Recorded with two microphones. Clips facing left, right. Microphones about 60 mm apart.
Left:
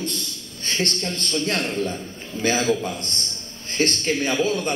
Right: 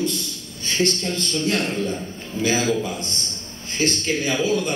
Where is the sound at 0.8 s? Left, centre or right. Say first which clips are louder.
Right 4 dB; left.